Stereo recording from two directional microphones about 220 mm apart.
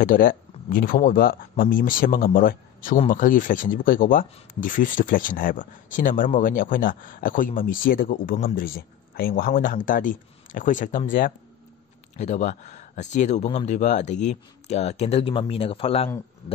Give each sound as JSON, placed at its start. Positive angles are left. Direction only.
{"t": 0.0, "sound": "speech", "side_deg": 40}